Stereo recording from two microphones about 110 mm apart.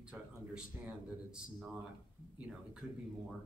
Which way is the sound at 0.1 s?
10° right (ahead or behind).